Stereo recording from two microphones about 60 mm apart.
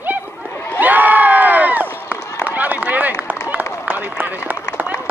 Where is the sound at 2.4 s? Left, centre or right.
Right.